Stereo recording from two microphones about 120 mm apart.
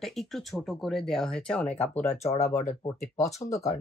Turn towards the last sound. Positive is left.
turn(degrees=30)  # may be behind; listen again after turning